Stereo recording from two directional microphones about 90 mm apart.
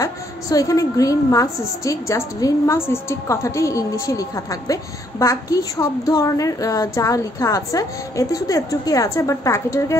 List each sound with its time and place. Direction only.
0.0 s a woman's voice: 40° left (ahead or behind)